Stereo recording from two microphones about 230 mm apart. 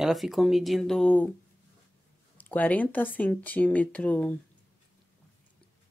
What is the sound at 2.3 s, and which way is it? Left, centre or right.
Speech, centre.